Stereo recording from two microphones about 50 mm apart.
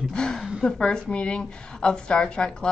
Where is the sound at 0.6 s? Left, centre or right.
Centre.